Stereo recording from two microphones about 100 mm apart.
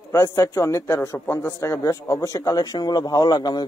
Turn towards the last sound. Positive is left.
turn(degrees=45)  # may be behind; listen again after turning